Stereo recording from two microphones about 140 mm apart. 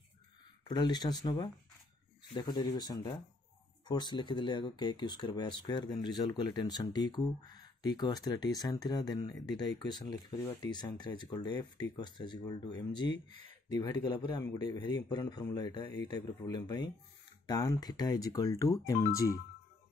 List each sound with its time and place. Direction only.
0.7 s speech: 30° left (ahead or behind)